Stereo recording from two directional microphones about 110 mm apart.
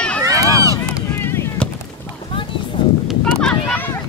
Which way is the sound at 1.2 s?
25° left (ahead or behind).